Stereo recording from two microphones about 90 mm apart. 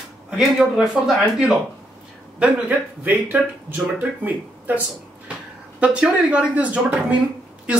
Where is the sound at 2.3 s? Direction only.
15° right (ahead or behind).